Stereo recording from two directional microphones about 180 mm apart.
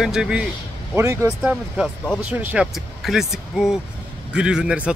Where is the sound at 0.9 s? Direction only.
15° right (ahead or behind).